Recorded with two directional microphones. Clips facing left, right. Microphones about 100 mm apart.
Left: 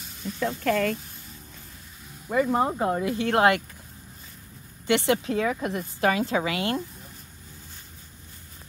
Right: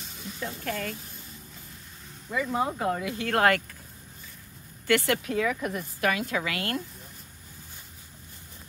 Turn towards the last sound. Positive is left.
turn(degrees=20)  # may be behind; listen again after turning